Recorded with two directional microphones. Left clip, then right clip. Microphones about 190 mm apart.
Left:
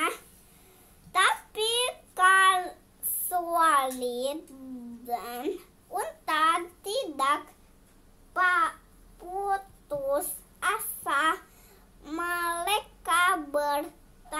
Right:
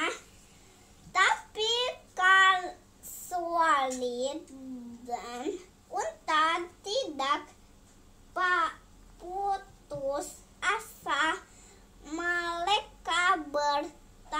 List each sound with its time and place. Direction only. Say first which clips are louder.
1.1 s child singing: left 1 dB; 25° left (ahead or behind)
5.0 s a sound: left 3 dB; 25° left (ahead or behind)
8.3 s crow: left 3 dB; 25° left (ahead or behind)
9.5 s child singing: left 3 dB; 30° left (ahead or behind)